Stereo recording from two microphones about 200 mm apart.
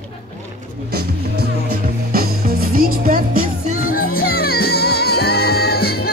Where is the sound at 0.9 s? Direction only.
55° right (ahead or behind).